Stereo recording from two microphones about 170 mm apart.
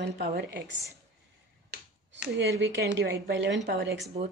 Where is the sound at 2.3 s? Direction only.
85° right.